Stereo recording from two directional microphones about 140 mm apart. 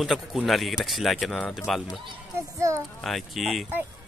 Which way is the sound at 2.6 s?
20° right (ahead or behind).